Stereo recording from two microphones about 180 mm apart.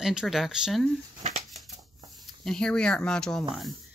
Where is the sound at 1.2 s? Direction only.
45° right (ahead or behind).